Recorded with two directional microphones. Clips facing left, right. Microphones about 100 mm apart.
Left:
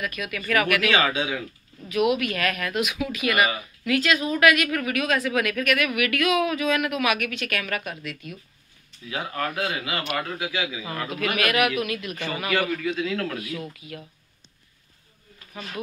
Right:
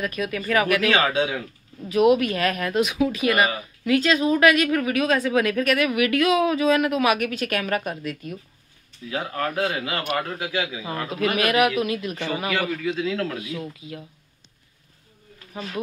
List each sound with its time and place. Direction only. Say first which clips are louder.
0.0 s speech: right 4 dB; 35° right (ahead or behind)
10.8 s a man's voice: right 2 dB; 15° right (ahead or behind)
11.1 s speech: right 3 dB; 30° right (ahead or behind)
12.8 s speech: right 2 dB; 20° right (ahead or behind)